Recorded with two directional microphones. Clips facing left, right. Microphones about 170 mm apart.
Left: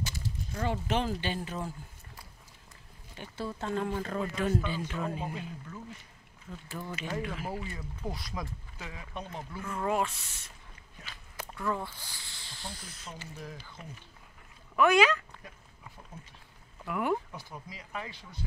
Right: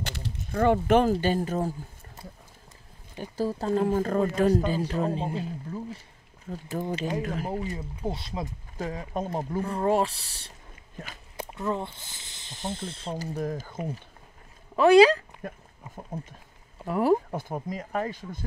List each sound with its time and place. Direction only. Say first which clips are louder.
0.0 s a sound: right 2 dB; 65° right (ahead or behind)
1.2 s speech: right 9 dB; 45° right (ahead or behind)
3.2 s speech: right 8 dB; 40° right (ahead or behind)
7.4 s speech: right 6 dB; 25° right (ahead or behind)
8.7 s speech: right 12 dB; 40° right (ahead or behind)
11.3 s speech: right 4 dB; 25° right (ahead or behind)
13.3 s speech: right 13 dB; 50° right (ahead or behind)
14.8 s speech: right 8 dB; 35° right (ahead or behind)
16.0 s speech: right 14 dB; 50° right (ahead or behind)
16.8 s speech: right 8 dB; 35° right (ahead or behind)
17.3 s speech: right 12 dB; 50° right (ahead or behind)